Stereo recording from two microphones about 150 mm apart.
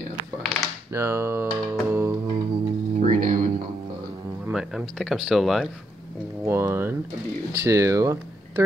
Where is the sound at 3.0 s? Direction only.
65° right (ahead or behind).